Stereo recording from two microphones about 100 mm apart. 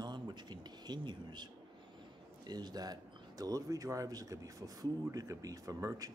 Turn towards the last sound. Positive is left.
turn(degrees=-35)  # may be behind; listen again after turning